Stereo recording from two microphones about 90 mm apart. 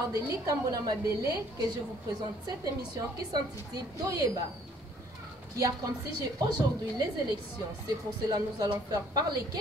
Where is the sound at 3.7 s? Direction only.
45° right (ahead or behind).